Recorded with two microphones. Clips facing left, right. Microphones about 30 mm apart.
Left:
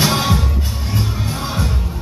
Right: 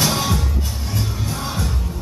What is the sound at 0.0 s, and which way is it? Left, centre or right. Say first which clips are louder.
Music: left 3 dB; left.